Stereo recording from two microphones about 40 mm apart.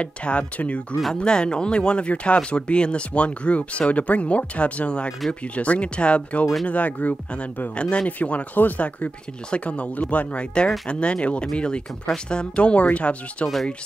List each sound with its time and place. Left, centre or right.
0.0 s speech: left
1.2 s speech: left
6.7 s speech: left
7.7 s speech: left